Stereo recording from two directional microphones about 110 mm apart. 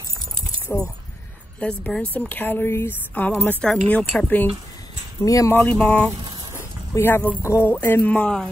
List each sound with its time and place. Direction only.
0.7 s speech: 20° left (ahead or behind)
1.6 s a woman's voice: 10° left (ahead or behind)
5.2 s speech: 30° left (ahead or behind)
5.5 s a woman's voice: 15° left (ahead or behind)
6.5 s a woman's voice: 25° left (ahead or behind)